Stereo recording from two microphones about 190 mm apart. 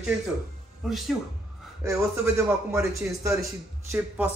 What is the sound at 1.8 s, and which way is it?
A man's voice, 15° right (ahead or behind).